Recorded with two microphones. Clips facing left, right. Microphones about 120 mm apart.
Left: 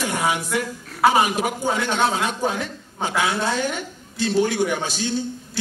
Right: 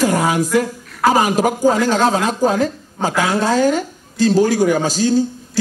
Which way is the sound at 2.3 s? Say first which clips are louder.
Right 8 dB; 35° right (ahead or behind).